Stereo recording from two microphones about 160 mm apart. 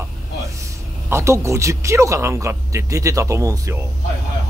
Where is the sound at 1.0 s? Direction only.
15° right (ahead or behind).